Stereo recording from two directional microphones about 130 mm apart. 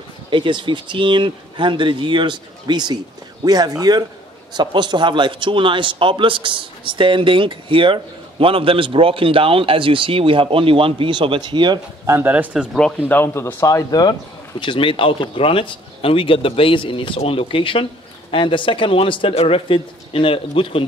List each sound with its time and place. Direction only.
0.3 s a man's voice: 40° right (ahead or behind)
12.1 s a man's voice: 15° right (ahead or behind)
13.1 s speech: 15° left (ahead or behind)
14.6 s speech: 40° left (ahead or behind)